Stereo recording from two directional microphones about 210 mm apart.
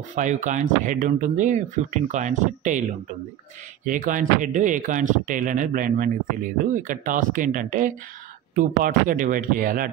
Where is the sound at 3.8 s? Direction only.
40° right (ahead or behind).